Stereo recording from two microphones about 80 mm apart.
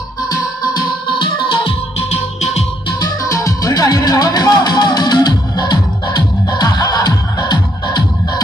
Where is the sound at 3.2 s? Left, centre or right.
Left.